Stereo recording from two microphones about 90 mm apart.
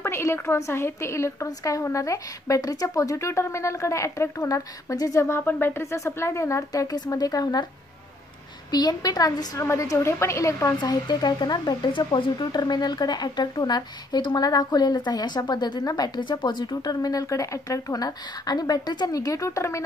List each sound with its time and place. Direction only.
0.0 s a woman's voice: 30° left (ahead or behind); by 7.6 s 45° left (ahead or behind)
8.7 s a woman's voice: 45° left (ahead or behind)
10.8 s speech: 50° left (ahead or behind)
16.2 s speech: 60° left (ahead or behind); by 19.8 s 35° left (ahead or behind)